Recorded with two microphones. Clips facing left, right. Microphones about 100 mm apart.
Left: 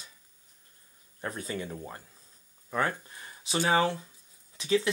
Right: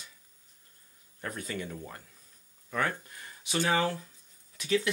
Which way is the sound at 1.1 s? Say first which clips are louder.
Left 2 dB; 30° left (ahead or behind).